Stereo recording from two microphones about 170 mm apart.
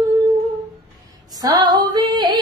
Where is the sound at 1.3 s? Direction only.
20° right (ahead or behind).